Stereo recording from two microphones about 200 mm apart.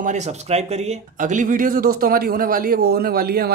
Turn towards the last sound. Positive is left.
turn(degrees=-50)  # may be behind; listen again after turning